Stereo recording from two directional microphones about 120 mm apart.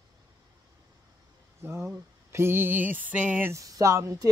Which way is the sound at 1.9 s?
20° right (ahead or behind).